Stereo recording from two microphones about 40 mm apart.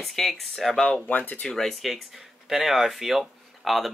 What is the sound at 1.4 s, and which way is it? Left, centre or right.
Speech, centre.